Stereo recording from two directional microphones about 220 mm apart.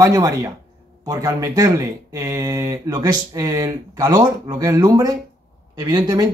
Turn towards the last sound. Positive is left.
turn(degrees=-20)  # may be behind; listen again after turning